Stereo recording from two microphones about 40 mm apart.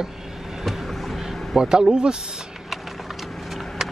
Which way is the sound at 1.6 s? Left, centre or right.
Centre.